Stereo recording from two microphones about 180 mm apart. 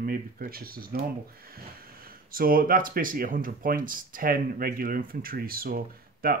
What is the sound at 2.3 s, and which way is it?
Speech, 50° right (ahead or behind).